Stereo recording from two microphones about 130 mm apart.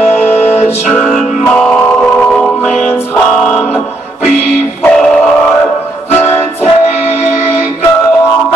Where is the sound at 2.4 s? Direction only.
5° left (ahead or behind).